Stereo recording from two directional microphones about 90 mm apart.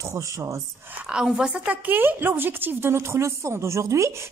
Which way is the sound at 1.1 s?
10° right (ahead or behind).